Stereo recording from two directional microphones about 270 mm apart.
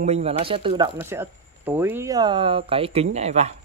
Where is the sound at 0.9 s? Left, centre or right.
Centre.